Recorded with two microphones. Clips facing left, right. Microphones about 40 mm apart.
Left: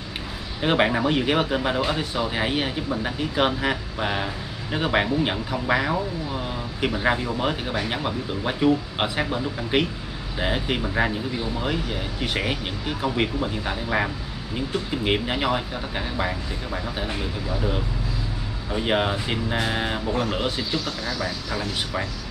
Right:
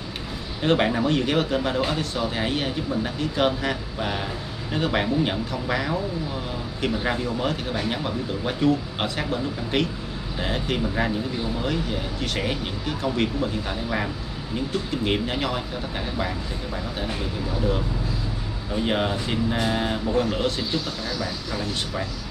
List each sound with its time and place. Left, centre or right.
0.6 s speech: centre
18.7 s speech: centre